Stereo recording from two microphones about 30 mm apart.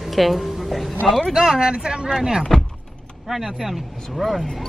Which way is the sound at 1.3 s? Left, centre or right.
Centre.